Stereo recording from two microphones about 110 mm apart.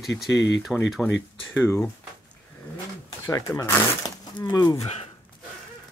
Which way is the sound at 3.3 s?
30° left (ahead or behind).